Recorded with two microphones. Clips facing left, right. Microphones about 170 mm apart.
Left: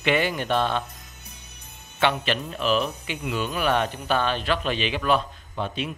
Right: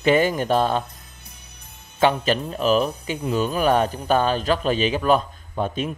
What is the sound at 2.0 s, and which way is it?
Speech, 40° right (ahead or behind).